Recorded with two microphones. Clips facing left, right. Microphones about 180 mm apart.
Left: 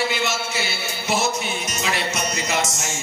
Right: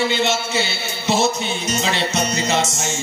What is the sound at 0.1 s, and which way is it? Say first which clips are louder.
Speech: right 5 dB; 25° right (ahead or behind).